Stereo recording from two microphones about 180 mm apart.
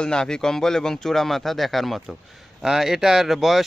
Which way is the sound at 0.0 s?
5° left (ahead or behind).